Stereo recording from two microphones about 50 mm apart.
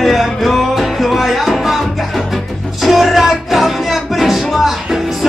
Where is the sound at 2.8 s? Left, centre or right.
Centre.